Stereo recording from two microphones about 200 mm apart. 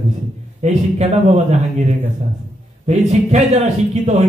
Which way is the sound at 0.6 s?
35° right (ahead or behind).